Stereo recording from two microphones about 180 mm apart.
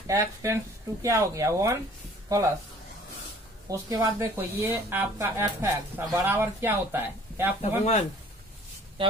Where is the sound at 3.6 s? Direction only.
15° right (ahead or behind).